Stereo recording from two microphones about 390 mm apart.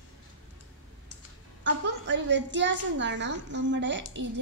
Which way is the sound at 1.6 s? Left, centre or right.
Right.